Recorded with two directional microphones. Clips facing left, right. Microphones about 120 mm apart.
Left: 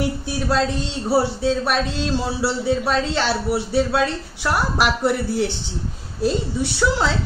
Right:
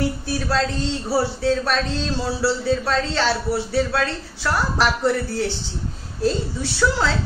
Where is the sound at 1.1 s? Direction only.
15° left (ahead or behind).